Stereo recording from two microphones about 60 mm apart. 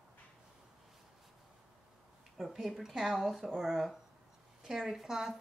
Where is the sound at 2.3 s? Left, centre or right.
Centre.